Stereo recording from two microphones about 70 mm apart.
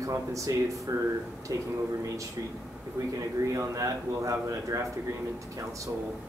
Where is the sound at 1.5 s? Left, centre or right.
Right.